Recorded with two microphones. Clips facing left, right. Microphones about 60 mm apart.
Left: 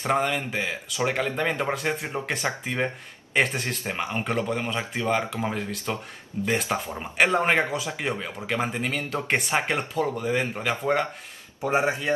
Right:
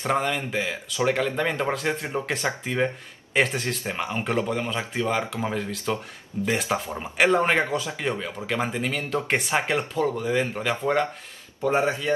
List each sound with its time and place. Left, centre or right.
0.2 s speech: centre
11.6 s speech: centre